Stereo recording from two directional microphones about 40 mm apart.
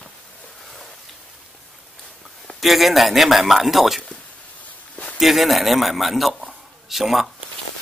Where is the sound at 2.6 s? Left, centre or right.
Centre.